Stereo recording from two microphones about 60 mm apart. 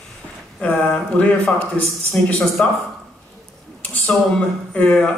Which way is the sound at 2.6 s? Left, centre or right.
Left.